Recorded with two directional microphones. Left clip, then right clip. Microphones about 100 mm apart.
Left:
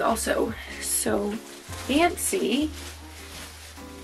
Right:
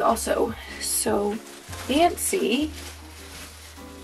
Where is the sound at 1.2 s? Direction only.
15° left (ahead or behind).